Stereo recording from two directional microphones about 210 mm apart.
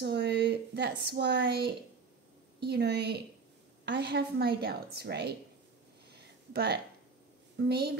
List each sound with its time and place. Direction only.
0.0 s a woman's voice: 50° right (ahead or behind)
6.1 s a sound: 50° right (ahead or behind)
7.6 s a woman's voice: 50° right (ahead or behind)